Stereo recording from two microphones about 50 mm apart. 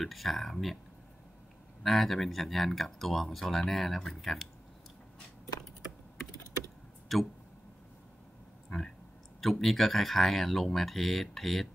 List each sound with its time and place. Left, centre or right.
0.0 s speech: centre
1.8 s speech: centre
7.1 s speech: centre
9.4 s speech: centre